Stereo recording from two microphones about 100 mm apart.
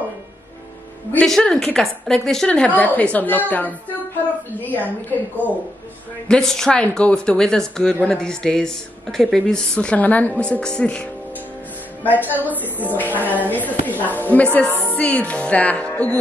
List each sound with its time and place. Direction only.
1.2 s speech: 5° left (ahead or behind)
6.2 s a woman's voice: 5° left (ahead or behind)